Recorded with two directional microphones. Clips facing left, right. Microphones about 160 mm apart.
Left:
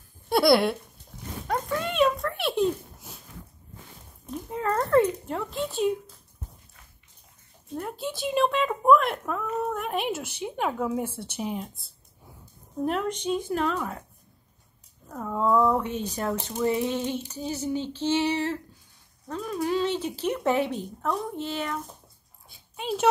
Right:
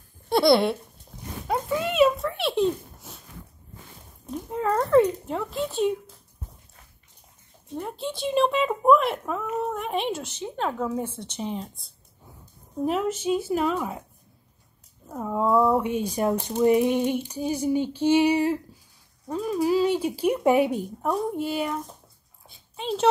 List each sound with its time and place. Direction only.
0.3 s speech: 5° left (ahead or behind)
1.5 s a sound: 5° right (ahead or behind)
4.5 s speech: centre (ahead or behind)
7.7 s speech: centre (ahead or behind)
12.8 s speech: 5° right (ahead or behind)
15.0 s speech: 15° right (ahead or behind)
22.5 s a sound: 5° left (ahead or behind)